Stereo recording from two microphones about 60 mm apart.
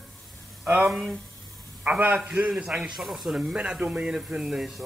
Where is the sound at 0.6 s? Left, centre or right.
Right; by 2.9 s centre.